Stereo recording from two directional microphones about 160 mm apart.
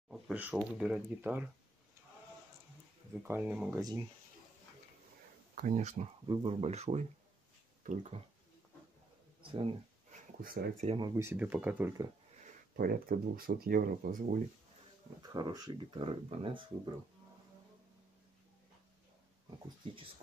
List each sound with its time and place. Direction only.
0.1 s speech: 10° right (ahead or behind)
3.2 s speech: 10° right (ahead or behind)
5.6 s speech: 50° right (ahead or behind)
6.2 s speech: 35° right (ahead or behind)
9.4 s speech: 35° right (ahead or behind)
10.4 s speech: 65° right (ahead or behind)
11.0 s speech: 20° right (ahead or behind)
12.7 s speech: 65° right (ahead or behind)
15.2 s speech: 25° right (ahead or behind)
16.0 s speech: 35° right (ahead or behind)